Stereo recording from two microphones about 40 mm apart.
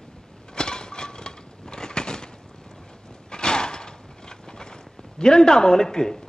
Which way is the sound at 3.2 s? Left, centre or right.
Centre.